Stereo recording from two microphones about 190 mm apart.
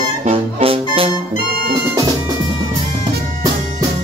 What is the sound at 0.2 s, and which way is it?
Music, 30° right (ahead or behind).